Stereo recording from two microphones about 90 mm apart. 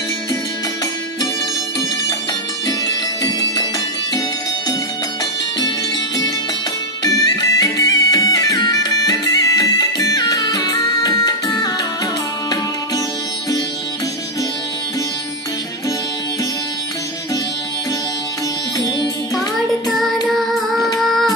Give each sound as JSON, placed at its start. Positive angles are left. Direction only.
{"t": 2.9, "sound": "music", "side_deg": 45}
{"t": 7.0, "sound": "music", "side_deg": 45}
{"t": 18.8, "sound": "music", "side_deg": 50}
{"t": 19.9, "sound": "child singing", "side_deg": 0}
{"t": 21.0, "sound": "music", "side_deg": 5}